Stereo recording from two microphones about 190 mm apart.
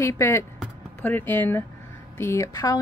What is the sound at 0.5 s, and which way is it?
Music, 10° left (ahead or behind).